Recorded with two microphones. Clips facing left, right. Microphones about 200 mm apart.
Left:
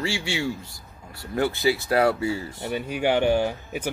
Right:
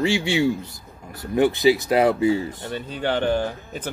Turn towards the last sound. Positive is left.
turn(degrees=10)  # may be behind; listen again after turning